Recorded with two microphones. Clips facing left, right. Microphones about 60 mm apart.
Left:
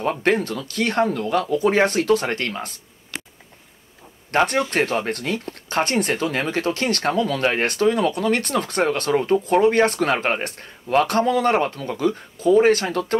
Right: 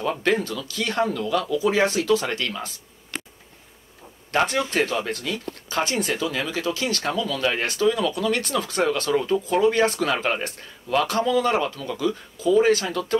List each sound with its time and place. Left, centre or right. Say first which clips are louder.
0.0 s speech: left 2 dB; left
4.5 s speech: left 2 dB; left